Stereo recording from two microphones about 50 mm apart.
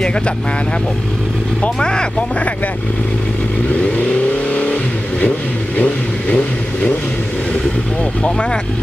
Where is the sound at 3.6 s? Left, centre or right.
Left.